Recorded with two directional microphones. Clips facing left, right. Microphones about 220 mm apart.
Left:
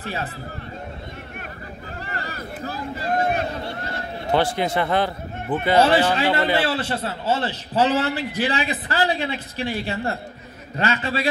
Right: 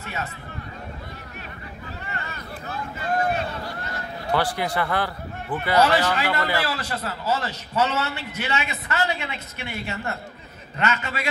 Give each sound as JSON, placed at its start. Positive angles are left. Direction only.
{"t": 0.0, "sound": "a man's voice", "side_deg": 35}
{"t": 2.1, "sound": "a sound", "side_deg": 35}
{"t": 3.5, "sound": "a man's voice", "side_deg": 30}